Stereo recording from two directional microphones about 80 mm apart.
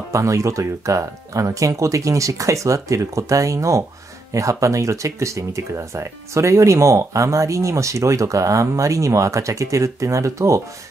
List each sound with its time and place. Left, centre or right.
0.1 s speech: right